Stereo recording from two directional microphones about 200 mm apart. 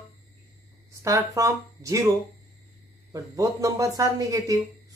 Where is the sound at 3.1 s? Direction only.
15° right (ahead or behind).